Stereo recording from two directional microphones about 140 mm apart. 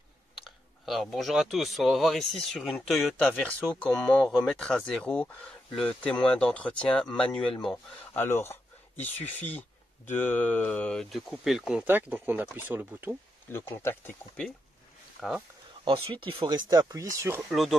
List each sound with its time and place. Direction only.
0.4 s speech: centre (ahead or behind)
13.5 s speech: 15° left (ahead or behind)
15.1 s speech: centre (ahead or behind)
15.8 s speech: 40° right (ahead or behind); by 17.4 s 20° right (ahead or behind)
17.4 s speech: centre (ahead or behind)